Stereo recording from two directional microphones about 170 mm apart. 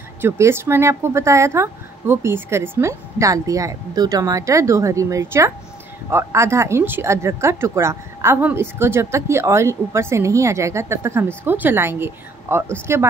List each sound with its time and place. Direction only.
0.2 s speech: 15° right (ahead or behind)